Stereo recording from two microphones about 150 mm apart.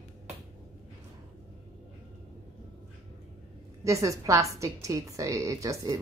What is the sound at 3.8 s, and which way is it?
A woman's voice, 20° right (ahead or behind).